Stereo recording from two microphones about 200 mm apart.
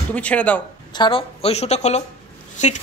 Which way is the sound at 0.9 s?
25° left (ahead or behind).